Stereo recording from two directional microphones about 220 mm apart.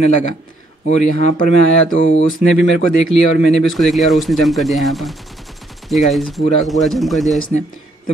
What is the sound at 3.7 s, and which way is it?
Speech, centre (ahead or behind).